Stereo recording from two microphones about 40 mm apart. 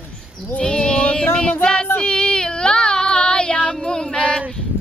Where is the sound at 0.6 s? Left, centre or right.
Left.